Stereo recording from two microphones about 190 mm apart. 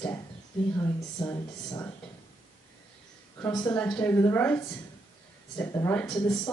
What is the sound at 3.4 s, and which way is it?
Speech, 15° left (ahead or behind).